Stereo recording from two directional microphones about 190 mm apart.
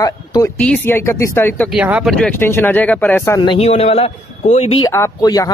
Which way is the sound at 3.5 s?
35° left (ahead or behind).